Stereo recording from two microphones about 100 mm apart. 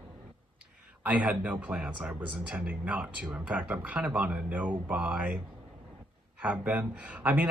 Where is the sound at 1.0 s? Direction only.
10° right (ahead or behind).